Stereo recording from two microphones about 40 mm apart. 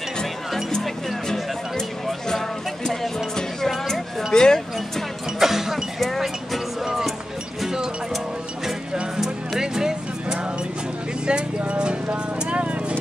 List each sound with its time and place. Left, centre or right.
2.2 s music: centre
4.3 s a sound: centre
5.4 s a sound: centre
5.9 s music: centre
7.6 s music: centre
9.6 s music: centre; by 12.8 s right